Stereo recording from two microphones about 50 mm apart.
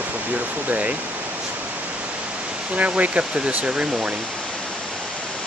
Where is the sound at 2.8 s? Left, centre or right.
Right.